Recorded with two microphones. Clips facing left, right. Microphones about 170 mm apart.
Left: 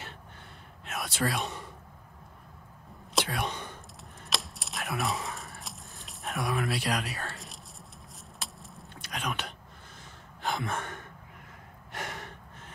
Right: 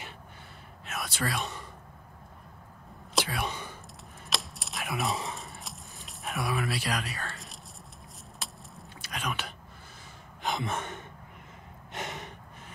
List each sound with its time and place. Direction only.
0.8 s speech: centre (ahead or behind)
3.2 s speech: 5° right (ahead or behind)
4.3 s computer keyboard: centre (ahead or behind)
5.6 s a sound: centre (ahead or behind)
10.4 s gasp: 20° right (ahead or behind)